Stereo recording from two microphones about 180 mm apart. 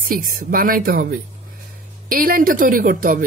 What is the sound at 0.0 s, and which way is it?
Speech, 50° right (ahead or behind).